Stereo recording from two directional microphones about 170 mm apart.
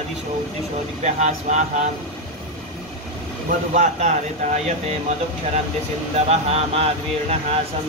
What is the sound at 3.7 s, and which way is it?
Speech, 45° right (ahead or behind).